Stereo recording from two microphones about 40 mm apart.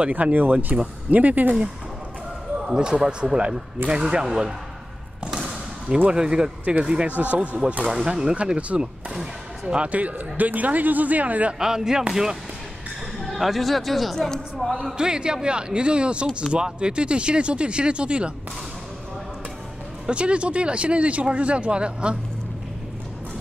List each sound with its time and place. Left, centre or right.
0.0 s speech: right
2.5 s speech: right
6.1 s speech: centre
7.1 s speech: right
7.8 s speech: centre
8.4 s speech: right
9.1 s speech: centre
9.8 s speech: right
11.6 s speech: centre
13.2 s speech: centre
15.0 s speech: right
20.1 s speech: right